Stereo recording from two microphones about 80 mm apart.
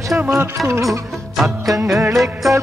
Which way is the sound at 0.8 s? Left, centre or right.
Centre.